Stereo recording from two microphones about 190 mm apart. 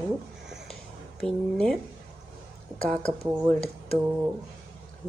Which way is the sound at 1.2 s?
5° left (ahead or behind).